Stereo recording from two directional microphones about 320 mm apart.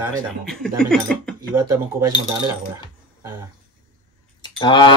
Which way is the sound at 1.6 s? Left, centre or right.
Centre.